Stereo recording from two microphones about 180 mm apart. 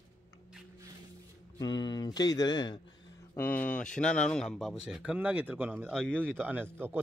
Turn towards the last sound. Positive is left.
turn(degrees=-10)  # may be behind; listen again after turning